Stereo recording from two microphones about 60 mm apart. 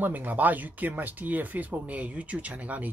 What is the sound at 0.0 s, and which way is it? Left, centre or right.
Speech, right.